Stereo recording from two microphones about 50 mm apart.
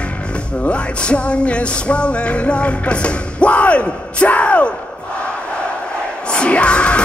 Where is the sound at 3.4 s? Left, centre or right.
Left.